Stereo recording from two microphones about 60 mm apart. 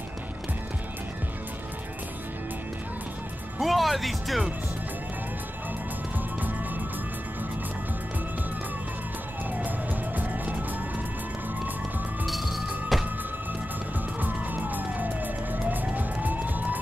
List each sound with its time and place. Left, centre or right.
3.5 s speech: centre
9.5 s music: right
12.3 s music: centre
14.2 s police car: right